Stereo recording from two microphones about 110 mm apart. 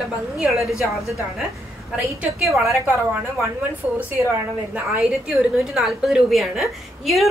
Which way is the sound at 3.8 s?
15° right (ahead or behind).